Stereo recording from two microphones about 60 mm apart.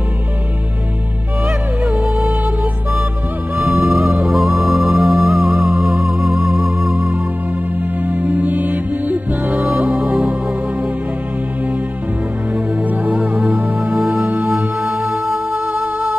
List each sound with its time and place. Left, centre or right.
1.8 s music: centre
2.1 s music: right
3.6 s music: centre
8.0 s music: right
12.5 s music: right
13.7 s music: centre
14.2 s music: right
14.8 s music: centre